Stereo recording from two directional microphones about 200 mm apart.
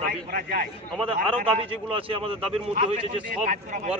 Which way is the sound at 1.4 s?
30° right (ahead or behind).